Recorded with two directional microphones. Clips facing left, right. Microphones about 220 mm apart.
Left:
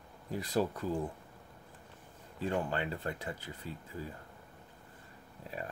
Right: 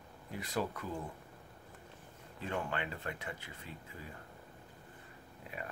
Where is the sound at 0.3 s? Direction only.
35° left (ahead or behind).